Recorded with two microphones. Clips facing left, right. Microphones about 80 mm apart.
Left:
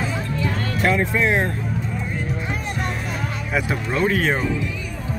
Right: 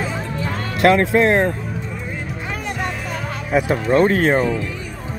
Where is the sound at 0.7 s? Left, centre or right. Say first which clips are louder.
Right 7 dB; right.